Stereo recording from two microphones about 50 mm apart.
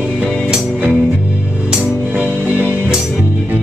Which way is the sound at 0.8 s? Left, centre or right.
Right.